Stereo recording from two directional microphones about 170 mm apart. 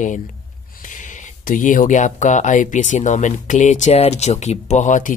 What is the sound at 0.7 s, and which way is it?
Speech, 50° left (ahead or behind).